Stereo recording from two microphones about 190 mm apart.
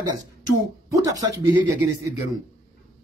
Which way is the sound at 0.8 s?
15° right (ahead or behind).